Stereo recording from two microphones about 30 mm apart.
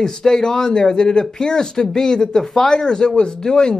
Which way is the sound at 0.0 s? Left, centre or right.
Centre.